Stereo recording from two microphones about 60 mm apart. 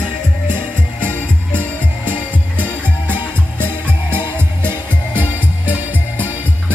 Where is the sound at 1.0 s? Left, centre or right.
Left.